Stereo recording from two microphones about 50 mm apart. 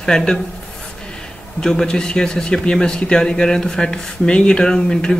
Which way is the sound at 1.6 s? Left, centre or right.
Centre.